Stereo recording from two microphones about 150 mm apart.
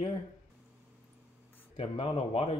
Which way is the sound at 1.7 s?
35° left (ahead or behind).